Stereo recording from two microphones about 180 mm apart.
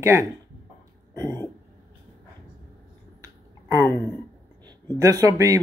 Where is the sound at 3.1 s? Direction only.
20° right (ahead or behind).